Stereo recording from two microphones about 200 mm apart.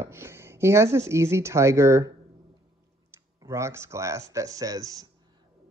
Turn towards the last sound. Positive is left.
turn(degrees=-15)  # may be behind; listen again after turning